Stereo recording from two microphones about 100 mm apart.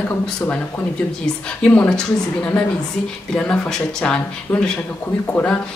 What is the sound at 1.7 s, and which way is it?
Speech, 10° left (ahead or behind).